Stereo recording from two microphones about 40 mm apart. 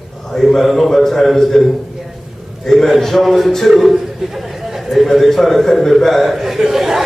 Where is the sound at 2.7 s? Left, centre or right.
Centre.